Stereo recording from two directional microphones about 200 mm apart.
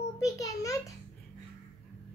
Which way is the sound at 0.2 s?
15° left (ahead or behind).